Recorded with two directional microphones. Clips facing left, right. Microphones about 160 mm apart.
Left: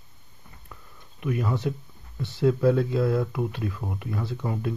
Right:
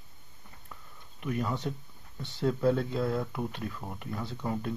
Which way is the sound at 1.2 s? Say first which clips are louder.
Left 5 dB; 5° left (ahead or behind).